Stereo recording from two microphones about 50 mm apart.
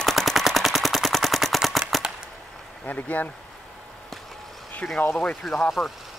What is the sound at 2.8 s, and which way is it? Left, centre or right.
Speech, left.